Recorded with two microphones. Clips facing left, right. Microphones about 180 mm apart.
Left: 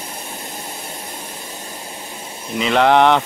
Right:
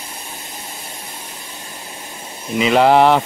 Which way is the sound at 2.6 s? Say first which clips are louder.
Right 2 dB; 5° right (ahead or behind).